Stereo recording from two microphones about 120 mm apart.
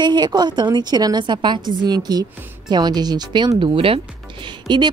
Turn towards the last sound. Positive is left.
turn(degrees=-40)  # may be behind; listen again after turning